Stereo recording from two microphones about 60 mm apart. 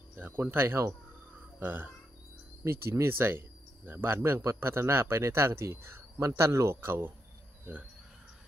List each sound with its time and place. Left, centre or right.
0.1 s speech: right
2.6 s speech: right
6.2 s speech: right